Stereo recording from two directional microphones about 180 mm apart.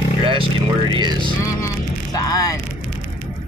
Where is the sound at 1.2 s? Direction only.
20° left (ahead or behind).